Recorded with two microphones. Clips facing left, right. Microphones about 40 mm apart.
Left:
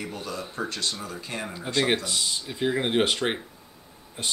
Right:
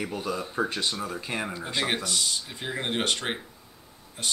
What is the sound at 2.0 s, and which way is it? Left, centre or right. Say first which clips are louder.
Speech: even; centre.